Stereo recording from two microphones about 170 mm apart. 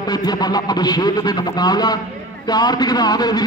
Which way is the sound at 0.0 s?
25° left (ahead or behind).